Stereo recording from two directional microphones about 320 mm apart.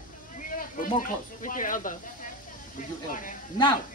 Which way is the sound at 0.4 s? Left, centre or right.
Left.